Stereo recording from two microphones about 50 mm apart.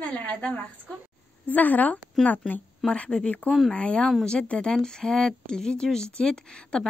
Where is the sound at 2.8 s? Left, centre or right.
Left.